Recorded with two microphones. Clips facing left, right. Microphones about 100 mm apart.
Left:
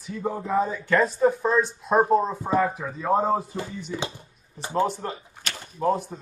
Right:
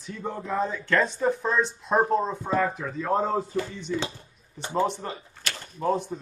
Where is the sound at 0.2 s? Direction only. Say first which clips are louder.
Left 4 dB; 10° left (ahead or behind).